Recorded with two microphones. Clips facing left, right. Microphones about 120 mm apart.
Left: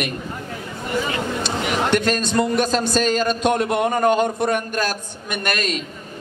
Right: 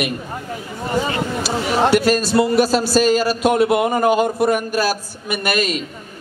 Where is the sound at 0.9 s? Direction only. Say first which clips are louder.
Right 3 dB; 35° right (ahead or behind).